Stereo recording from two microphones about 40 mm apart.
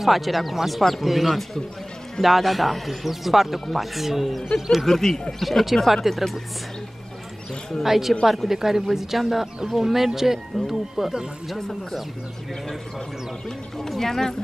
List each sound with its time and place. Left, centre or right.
0.0 s speech: centre
4.8 s speech: centre
7.8 s speech: centre
11.5 s speech: centre
13.5 s speech: centre